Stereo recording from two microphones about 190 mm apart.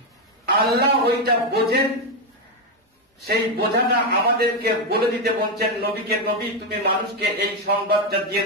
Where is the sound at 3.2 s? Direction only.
55° right (ahead or behind).